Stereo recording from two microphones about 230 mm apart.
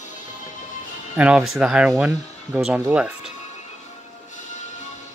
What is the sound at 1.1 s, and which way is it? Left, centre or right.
Speech, centre.